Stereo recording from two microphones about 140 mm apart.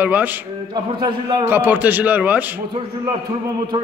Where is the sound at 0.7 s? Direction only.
35° right (ahead or behind).